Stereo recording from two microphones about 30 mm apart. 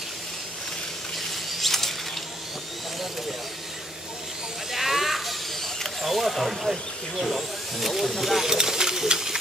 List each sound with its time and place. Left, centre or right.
1.6 s a sound: centre
4.6 s sheep: centre
6.0 s speech: centre
8.5 s pigeon: centre